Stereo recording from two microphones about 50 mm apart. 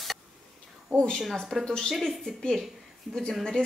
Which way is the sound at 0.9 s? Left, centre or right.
Left.